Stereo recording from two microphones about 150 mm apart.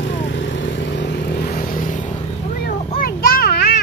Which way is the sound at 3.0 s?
75° left (ahead or behind).